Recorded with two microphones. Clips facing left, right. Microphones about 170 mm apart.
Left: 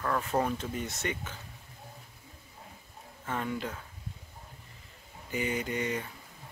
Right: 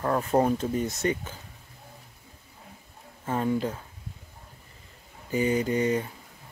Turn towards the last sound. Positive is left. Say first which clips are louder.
# right 8 dB
turn(degrees=-35)  # may be behind; listen again after turning